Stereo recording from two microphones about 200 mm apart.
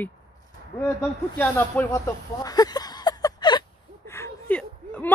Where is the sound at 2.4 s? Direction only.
20° left (ahead or behind).